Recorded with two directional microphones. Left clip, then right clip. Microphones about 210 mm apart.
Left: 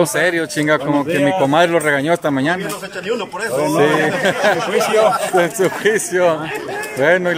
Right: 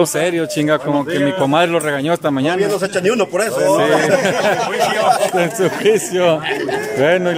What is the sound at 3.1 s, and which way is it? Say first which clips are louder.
Speech: right 5 dB; 55° right (ahead or behind).